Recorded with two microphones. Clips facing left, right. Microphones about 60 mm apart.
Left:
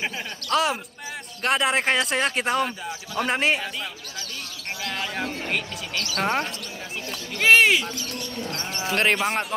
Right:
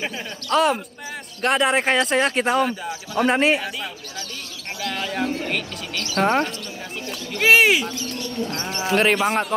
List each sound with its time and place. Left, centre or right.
0.5 s speech: centre
4.8 s speech: centre
6.2 s speech: centre
7.3 s speech: centre
8.5 s speech: right
8.9 s speech: centre